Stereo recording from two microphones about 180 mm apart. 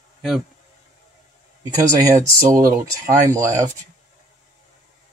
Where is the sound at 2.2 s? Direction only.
15° right (ahead or behind).